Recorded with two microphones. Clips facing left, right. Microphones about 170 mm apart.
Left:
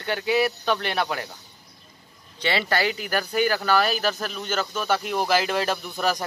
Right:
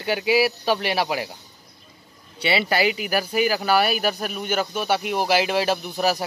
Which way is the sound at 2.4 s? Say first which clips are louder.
Right 3 dB; 10° right (ahead or behind).